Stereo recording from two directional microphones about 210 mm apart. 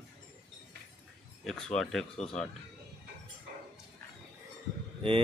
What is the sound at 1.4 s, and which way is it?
Speech, 5° left (ahead or behind).